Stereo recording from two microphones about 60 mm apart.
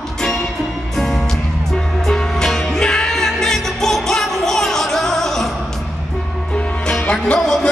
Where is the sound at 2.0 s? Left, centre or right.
Centre.